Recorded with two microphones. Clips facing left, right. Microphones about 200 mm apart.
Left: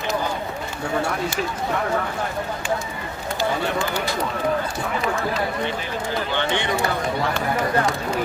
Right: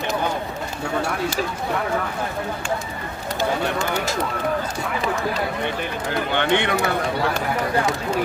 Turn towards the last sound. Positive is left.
turn(degrees=-60)  # may be behind; listen again after turning